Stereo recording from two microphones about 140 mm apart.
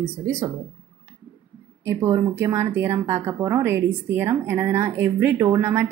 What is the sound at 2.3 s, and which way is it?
A woman's voice, 20° right (ahead or behind).